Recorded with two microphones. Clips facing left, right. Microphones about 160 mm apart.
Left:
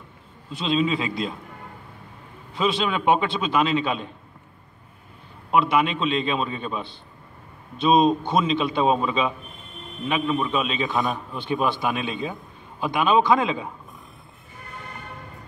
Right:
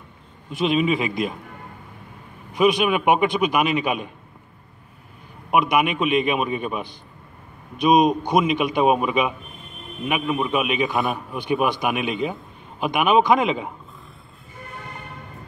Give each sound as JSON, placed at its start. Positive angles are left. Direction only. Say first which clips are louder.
{"t": 0.5, "sound": "a man's voice", "louder": "right 3 dB", "side_deg": -15}
{"t": 2.5, "sound": "a man's voice", "louder": "right 5 dB", "side_deg": -15}
{"t": 5.5, "sound": "a man's voice", "louder": "right 1 dB", "side_deg": -15}